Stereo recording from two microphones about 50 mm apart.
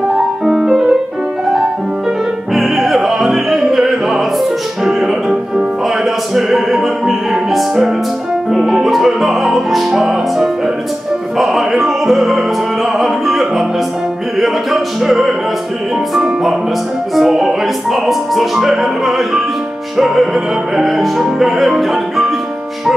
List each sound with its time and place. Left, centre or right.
0.5 s music: centre
2.5 s opera: centre
6.3 s music: centre